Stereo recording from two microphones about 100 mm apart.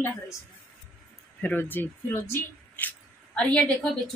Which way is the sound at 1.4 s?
20° left (ahead or behind).